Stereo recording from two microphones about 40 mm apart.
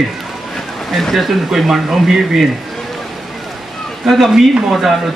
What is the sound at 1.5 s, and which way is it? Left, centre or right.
Speech, centre.